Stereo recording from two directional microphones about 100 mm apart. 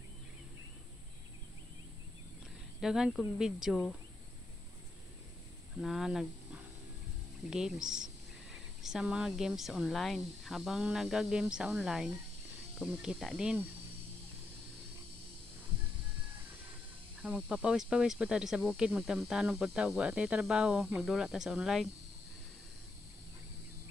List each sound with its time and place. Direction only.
2.8 s speech: 5° right (ahead or behind)
5.8 s speech: centre (ahead or behind)
17.5 s speech: 10° right (ahead or behind)